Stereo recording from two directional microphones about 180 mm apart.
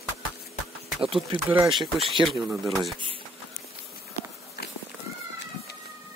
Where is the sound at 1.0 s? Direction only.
Centre (ahead or behind).